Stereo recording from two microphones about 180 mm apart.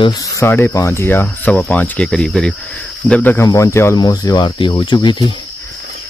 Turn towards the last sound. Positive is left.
turn(degrees=25)  # may be behind; listen again after turning